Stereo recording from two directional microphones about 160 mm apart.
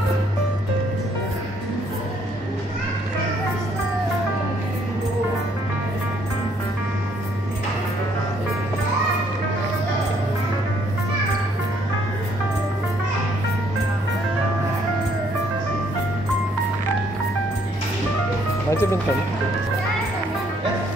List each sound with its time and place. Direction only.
18.7 s music: 15° left (ahead or behind)